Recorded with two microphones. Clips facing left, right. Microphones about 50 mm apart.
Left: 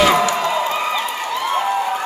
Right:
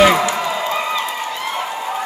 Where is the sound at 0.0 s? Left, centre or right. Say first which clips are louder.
Right 2 dB; centre.